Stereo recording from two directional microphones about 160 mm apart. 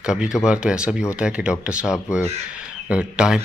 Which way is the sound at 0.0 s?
5° right (ahead or behind).